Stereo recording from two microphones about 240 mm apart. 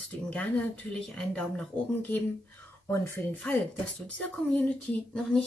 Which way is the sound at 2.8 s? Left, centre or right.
Centre.